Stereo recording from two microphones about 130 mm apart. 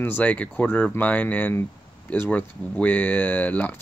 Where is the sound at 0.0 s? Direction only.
15° left (ahead or behind).